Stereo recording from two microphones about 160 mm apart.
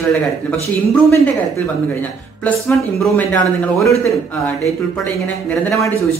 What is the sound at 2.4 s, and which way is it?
A man's voice, 10° left (ahead or behind).